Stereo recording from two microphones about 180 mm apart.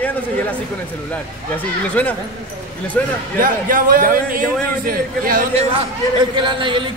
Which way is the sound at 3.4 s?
50° right (ahead or behind).